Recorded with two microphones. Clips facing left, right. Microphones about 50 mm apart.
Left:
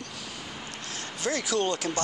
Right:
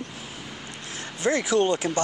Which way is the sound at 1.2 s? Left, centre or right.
Right.